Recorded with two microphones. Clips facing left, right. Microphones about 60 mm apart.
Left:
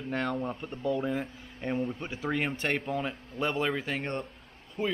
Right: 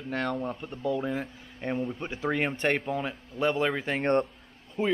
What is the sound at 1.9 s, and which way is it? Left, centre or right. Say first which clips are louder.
Speech: right 2 dB; centre.